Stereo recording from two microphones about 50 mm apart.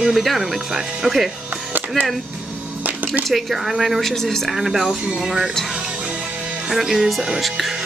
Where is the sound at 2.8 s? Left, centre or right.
Right.